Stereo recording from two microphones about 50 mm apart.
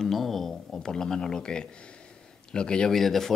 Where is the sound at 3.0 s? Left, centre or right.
Centre.